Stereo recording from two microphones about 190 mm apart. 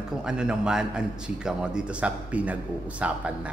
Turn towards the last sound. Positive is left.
turn(degrees=-5)  # may be behind; listen again after turning